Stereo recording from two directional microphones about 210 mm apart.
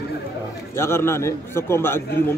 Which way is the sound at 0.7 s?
10° left (ahead or behind).